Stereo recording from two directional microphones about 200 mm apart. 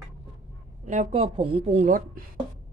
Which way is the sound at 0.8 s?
35° right (ahead or behind).